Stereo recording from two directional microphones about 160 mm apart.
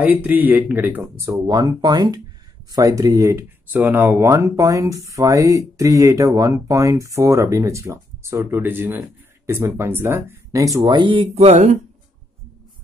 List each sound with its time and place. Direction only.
0.0 s speech: 10° right (ahead or behind)
10.8 s speech: 30° right (ahead or behind)
11.3 s speech: 45° right (ahead or behind)